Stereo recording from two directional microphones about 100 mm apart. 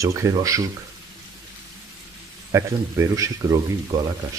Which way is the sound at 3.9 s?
45° right (ahead or behind).